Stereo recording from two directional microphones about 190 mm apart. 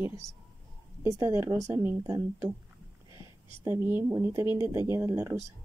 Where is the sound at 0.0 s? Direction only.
15° right (ahead or behind).